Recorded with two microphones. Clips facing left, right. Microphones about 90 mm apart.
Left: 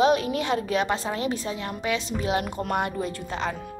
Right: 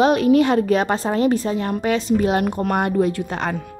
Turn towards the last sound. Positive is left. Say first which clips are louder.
# right 8 dB
turn(degrees=-55)  # may be behind; listen again after turning